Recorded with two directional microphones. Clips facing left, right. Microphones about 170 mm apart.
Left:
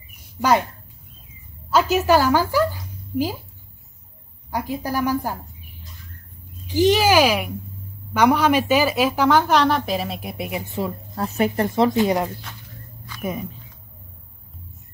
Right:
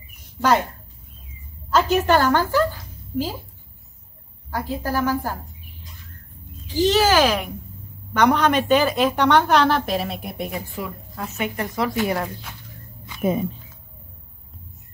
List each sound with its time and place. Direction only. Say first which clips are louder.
1.7 s speech: left 1 dB; 10° left (ahead or behind)
4.5 s a woman's voice: even; 15° left (ahead or behind)
6.7 s a woman's voice: left 1 dB; 15° left (ahead or behind)
10.8 s a woman's voice: left 5 dB; 35° left (ahead or behind)
13.0 s music: right 6 dB; 25° right (ahead or behind)